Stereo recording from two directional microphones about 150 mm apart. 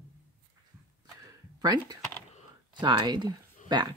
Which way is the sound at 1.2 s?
25° right (ahead or behind).